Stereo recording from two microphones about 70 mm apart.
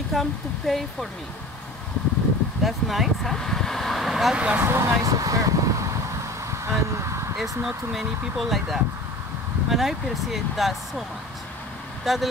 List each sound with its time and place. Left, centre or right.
0.1 s speech: centre
2.6 s speech: centre
4.4 s speech: right
4.6 s speech: right
5.1 s a sound: right
6.6 s speech: right
7.6 s speech: centre